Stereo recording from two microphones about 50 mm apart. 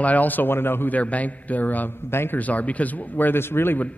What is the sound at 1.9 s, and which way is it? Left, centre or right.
Speech, left.